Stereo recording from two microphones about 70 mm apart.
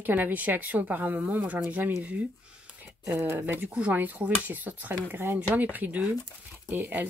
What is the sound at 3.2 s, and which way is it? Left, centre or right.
Speech, right.